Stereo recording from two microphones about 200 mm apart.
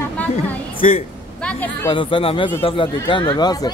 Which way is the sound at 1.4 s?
10° left (ahead or behind).